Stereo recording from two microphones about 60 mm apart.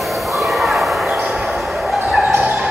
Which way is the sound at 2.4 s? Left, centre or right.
Centre.